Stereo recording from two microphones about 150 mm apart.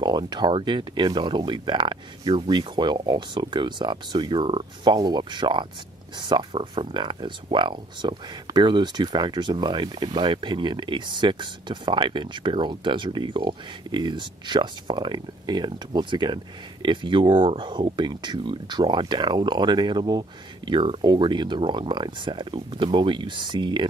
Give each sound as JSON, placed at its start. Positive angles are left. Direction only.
{"t": 0.0, "sound": "speech", "side_deg": -30}